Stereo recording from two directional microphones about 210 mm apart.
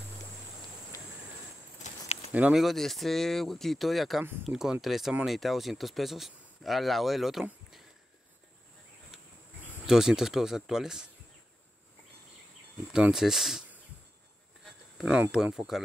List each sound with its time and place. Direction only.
1.8 s a sound: 30° left (ahead or behind)
2.3 s speech: 5° right (ahead or behind)
9.8 s speech: 5° right (ahead or behind)
12.9 s speech: 5° right (ahead or behind)
14.6 s a sound: centre (ahead or behind)
15.3 s speech: 5° right (ahead or behind)